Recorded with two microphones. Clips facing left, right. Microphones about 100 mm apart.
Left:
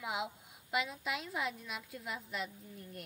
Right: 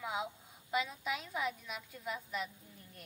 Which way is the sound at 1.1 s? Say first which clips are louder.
Right 1 dB; centre (ahead or behind).